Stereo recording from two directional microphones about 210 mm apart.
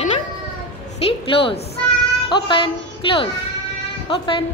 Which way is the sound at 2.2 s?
25° left (ahead or behind).